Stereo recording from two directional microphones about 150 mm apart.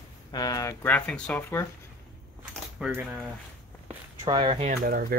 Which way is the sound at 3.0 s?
Centre (ahead or behind).